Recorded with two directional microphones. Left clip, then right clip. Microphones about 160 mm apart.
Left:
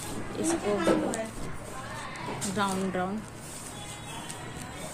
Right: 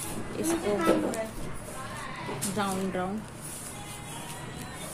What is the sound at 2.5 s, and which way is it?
Speech, centre (ahead or behind).